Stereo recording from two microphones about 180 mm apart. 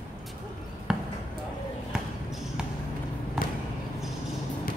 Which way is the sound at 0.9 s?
5° right (ahead or behind).